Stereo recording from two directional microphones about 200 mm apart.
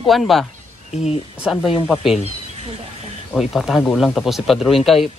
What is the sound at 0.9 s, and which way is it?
Speech, 35° left (ahead or behind).